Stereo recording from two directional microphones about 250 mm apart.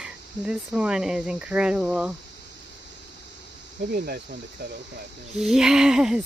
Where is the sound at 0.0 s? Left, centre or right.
Centre.